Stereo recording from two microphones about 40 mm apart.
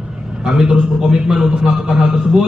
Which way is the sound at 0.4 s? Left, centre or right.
Centre.